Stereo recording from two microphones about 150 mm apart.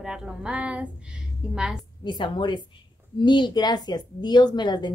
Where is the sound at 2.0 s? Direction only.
30° left (ahead or behind).